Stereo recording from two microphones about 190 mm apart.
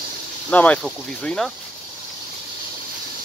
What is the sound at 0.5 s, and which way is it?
Speech, 5° left (ahead or behind).